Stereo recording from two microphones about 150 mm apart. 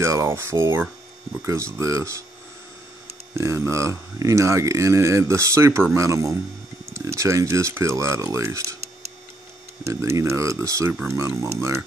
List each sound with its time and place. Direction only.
0.0 s speech: 20° right (ahead or behind)
3.3 s speech: 20° right (ahead or behind)
9.8 s speech: 20° right (ahead or behind)